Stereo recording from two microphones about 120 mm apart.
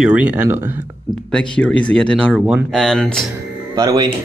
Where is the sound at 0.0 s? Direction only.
10° right (ahead or behind).